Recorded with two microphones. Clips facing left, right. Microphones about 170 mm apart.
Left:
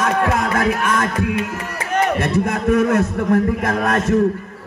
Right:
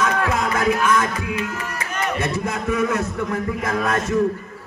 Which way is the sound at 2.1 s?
60° left (ahead or behind).